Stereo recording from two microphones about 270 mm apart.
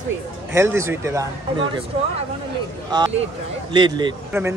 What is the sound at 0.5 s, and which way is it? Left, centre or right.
Speech, centre.